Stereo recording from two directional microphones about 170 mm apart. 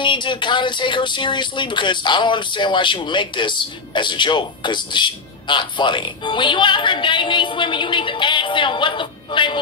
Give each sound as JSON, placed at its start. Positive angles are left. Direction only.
{"t": 0.0, "sound": "speech", "side_deg": 30}